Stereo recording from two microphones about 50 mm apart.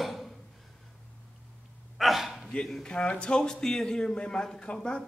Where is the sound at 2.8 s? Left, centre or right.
Centre.